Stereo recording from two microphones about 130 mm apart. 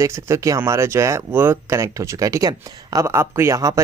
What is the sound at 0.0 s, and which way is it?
Speech, 25° right (ahead or behind).